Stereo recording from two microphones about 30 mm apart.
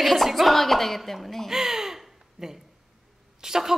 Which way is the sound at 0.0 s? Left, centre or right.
Centre.